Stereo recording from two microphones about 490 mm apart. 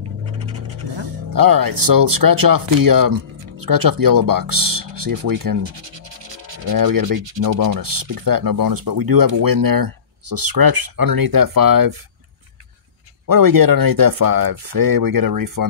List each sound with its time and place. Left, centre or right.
0.9 s speech: right
5.6 s music: right
6.7 s speech: right
13.3 s speech: right